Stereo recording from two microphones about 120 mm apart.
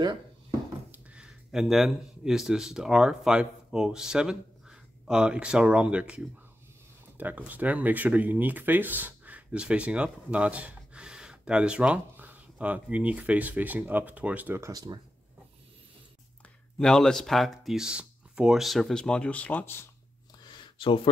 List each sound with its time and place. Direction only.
0.9 s speech: 10° right (ahead or behind)
14.7 s speech: 30° right (ahead or behind)
16.7 s speech: 5° left (ahead or behind)
20.5 s a sound: 45° left (ahead or behind)